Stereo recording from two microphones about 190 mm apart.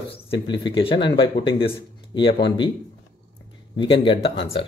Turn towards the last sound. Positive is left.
turn(degrees=30)  # may be behind; listen again after turning